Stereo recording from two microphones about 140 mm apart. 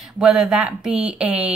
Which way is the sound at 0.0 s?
5° right (ahead or behind).